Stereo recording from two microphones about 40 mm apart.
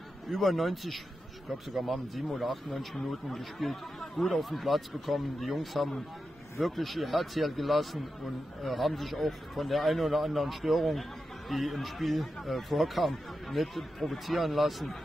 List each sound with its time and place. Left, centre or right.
0.3 s a man's voice: centre